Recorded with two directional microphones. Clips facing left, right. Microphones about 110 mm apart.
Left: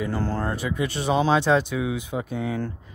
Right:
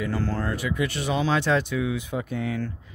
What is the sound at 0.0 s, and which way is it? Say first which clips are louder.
Speech: left 1 dB; 30° left (ahead or behind).